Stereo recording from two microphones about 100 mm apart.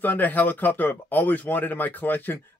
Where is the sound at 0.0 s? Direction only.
15° left (ahead or behind).